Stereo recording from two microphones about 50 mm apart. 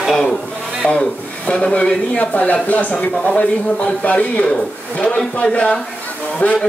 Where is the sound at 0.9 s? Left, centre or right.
Left.